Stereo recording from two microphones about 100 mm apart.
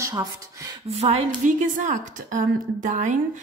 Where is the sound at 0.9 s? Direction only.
90° right.